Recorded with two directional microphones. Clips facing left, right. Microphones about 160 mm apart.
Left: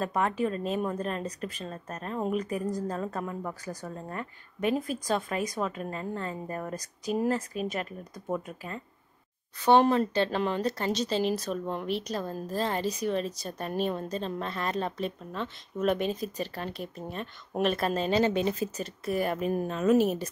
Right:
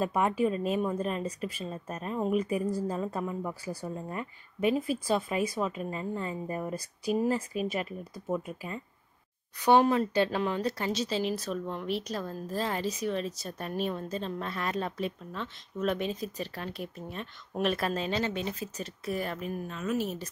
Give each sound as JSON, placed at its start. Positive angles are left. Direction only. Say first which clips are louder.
{"t": 0.0, "sound": "a woman's voice", "louder": "right 1 dB", "side_deg": -10}
{"t": 17.9, "sound": "a woman's voice", "louder": "left 5 dB", "side_deg": 40}
{"t": 18.8, "sound": "speech", "louder": "left 4 dB", "side_deg": 5}
{"t": 19.5, "sound": "a woman's voice", "louder": "left 11 dB", "side_deg": 35}